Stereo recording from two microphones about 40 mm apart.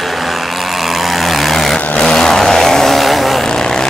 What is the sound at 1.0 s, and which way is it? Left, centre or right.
Vehicle, centre.